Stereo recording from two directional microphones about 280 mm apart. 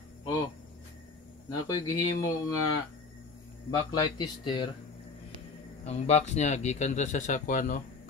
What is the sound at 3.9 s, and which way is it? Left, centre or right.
Speech, centre.